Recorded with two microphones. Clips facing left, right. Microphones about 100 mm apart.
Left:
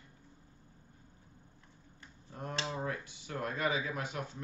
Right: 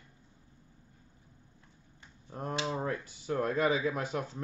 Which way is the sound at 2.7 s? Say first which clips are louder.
Right 4 dB; 40° right (ahead or behind).